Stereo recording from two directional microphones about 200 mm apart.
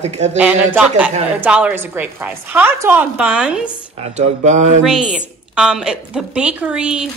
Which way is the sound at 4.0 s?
35° right (ahead or behind).